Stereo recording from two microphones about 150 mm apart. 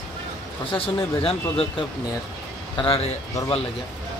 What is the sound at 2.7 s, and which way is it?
Speech, 35° left (ahead or behind).